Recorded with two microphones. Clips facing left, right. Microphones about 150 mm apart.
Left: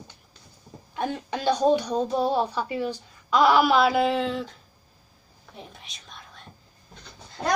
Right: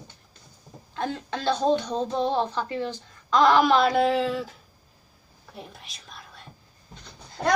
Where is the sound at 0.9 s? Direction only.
15° left (ahead or behind); by 4.5 s 5° right (ahead or behind).